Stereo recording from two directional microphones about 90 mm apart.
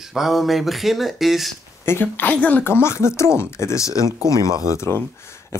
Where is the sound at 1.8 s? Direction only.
25° left (ahead or behind).